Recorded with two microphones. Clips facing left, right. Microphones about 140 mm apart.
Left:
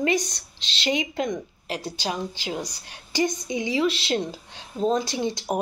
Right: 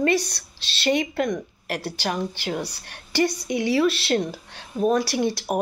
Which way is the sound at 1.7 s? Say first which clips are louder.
Right 2 dB; 60° right (ahead or behind).